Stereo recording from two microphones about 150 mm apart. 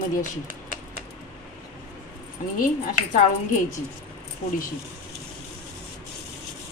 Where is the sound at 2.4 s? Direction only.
60° left (ahead or behind).